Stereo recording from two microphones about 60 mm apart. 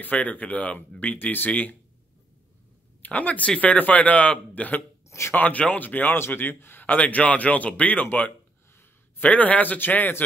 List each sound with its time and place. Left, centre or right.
0.0 s a man's voice: left
3.0 s a man's voice: left